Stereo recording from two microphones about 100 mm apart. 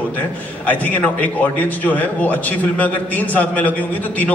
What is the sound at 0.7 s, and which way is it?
A man's voice, 15° left (ahead or behind).